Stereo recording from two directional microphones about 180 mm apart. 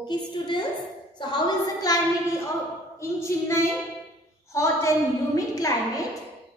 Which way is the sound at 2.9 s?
15° left (ahead or behind).